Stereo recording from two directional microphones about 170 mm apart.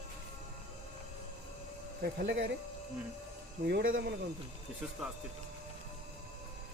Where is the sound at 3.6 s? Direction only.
85° right.